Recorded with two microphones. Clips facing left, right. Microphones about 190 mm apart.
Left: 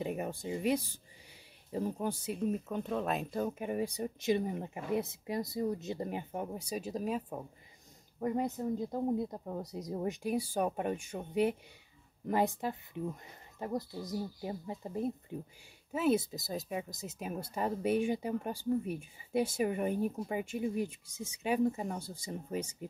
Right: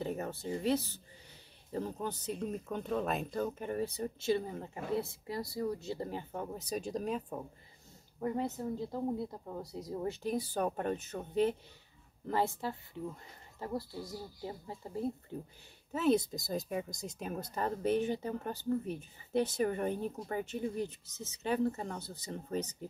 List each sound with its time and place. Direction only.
0.0 s speech: 15° left (ahead or behind)
8.2 s speech: 20° left (ahead or behind)